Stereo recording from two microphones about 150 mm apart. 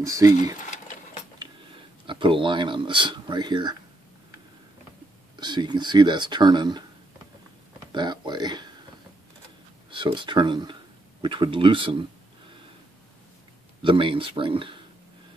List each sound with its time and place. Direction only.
0.0 s speech: 20° right (ahead or behind)
0.6 s sewing machine: 55° left (ahead or behind)
2.0 s speech: 35° right (ahead or behind)
5.3 s speech: 30° right (ahead or behind)
7.9 s speech: 30° right (ahead or behind)
9.8 s speech: 35° right (ahead or behind)
13.8 s speech: 35° right (ahead or behind)